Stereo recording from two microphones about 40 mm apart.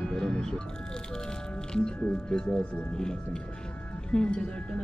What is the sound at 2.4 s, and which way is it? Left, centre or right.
Speech, left.